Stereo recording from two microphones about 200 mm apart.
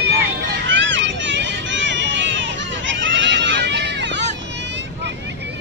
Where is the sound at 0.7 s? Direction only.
65° right (ahead or behind).